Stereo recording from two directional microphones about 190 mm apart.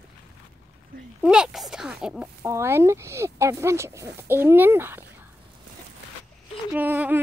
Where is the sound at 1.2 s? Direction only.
5° right (ahead or behind).